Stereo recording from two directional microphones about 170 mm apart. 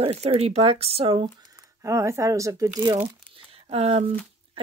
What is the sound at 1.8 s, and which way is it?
Speech, 15° right (ahead or behind).